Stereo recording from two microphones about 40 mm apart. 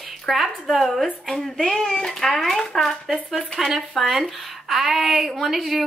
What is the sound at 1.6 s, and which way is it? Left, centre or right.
Speech, centre.